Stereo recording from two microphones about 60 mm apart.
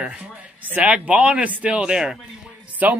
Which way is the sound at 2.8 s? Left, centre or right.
Right.